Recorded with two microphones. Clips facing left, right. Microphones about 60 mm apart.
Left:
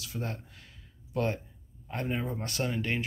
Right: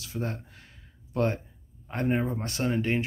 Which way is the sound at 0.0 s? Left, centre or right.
Right.